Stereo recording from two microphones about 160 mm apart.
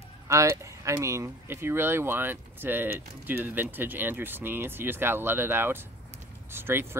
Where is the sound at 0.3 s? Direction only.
20° right (ahead or behind).